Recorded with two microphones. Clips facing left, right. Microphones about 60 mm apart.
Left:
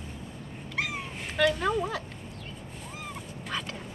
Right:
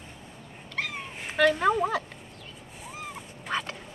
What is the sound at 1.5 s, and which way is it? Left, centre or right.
Speech, right.